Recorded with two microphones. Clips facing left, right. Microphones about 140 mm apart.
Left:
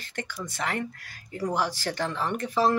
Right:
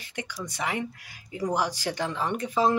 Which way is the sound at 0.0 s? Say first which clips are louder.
Even; 15° right (ahead or behind).